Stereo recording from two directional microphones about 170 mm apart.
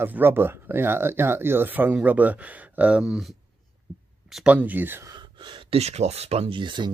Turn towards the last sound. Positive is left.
turn(degrees=-25)  # may be behind; listen again after turning